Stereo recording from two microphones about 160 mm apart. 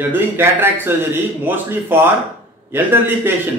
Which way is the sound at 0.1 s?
15° right (ahead or behind).